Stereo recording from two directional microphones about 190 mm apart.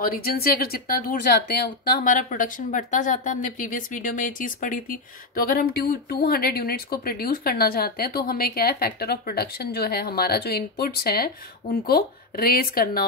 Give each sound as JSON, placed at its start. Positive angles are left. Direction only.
{"t": 0.0, "sound": "speech", "side_deg": 50}